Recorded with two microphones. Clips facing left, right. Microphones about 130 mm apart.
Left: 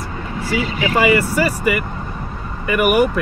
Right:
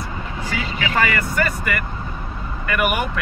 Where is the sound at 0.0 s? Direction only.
10° left (ahead or behind).